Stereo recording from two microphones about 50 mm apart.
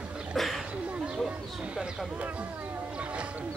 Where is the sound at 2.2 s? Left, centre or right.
Right.